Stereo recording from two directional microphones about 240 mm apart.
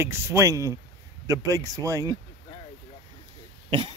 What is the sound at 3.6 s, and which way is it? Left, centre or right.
Speech, right.